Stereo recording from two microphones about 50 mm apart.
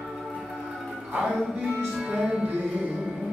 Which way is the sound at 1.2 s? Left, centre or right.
Centre.